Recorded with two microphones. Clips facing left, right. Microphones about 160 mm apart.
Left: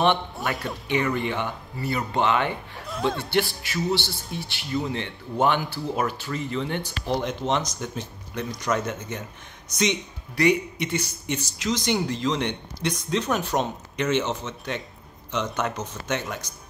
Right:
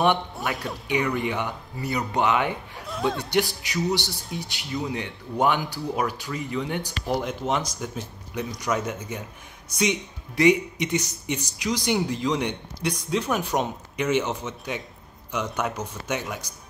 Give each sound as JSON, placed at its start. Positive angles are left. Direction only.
{"t": 0.4, "sound": "speech", "side_deg": 0}
{"t": 0.9, "sound": "speech", "side_deg": -15}
{"t": 2.8, "sound": "speech", "side_deg": 0}
{"t": 3.2, "sound": "speech", "side_deg": -15}
{"t": 10.3, "sound": "speech", "side_deg": -20}